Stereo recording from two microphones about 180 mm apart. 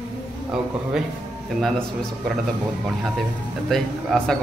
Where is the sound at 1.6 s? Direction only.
Centre (ahead or behind).